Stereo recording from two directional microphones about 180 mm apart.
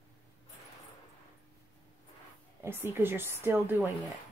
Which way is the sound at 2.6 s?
15° right (ahead or behind).